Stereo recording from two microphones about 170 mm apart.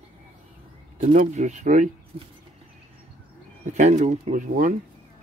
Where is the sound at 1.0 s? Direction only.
45° right (ahead or behind).